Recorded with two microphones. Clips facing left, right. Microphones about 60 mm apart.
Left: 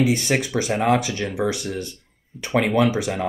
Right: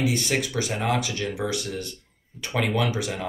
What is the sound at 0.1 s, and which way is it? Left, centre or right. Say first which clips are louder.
Speech: left 4 dB; left.